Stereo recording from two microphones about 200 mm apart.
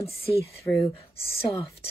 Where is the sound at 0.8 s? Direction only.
15° left (ahead or behind).